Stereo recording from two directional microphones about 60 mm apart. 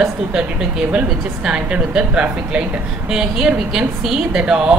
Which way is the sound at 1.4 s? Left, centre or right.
Centre.